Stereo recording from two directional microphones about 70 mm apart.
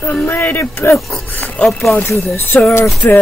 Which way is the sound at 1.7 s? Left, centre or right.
Centre.